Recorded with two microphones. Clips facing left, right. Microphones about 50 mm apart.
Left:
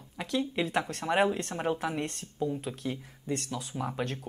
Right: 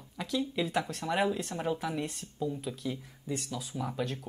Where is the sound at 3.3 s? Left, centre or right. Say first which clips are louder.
Left 3 dB; left.